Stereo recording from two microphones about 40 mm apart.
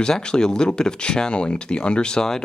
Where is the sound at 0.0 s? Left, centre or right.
Centre.